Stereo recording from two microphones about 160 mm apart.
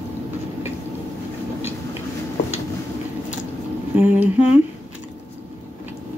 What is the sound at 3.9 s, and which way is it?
Mantra, 10° right (ahead or behind).